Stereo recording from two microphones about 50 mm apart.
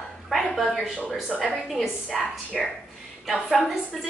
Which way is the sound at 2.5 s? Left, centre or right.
Centre.